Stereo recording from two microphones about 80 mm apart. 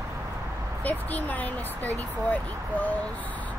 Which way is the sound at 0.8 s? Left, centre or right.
Left.